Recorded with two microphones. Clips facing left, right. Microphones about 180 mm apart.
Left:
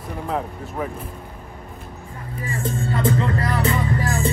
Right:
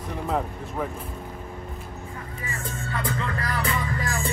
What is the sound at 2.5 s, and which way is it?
Speech, 30° left (ahead or behind).